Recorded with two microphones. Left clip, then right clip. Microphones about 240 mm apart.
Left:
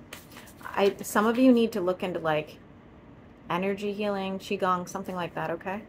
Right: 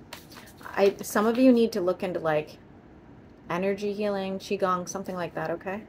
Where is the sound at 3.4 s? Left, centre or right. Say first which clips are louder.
Right 1 dB; centre.